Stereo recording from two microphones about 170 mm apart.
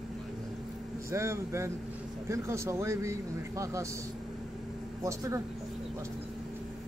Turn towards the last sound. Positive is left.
turn(degrees=-15)  # may be behind; listen again after turning